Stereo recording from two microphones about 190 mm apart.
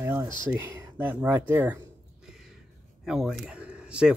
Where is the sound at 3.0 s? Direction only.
Centre (ahead or behind).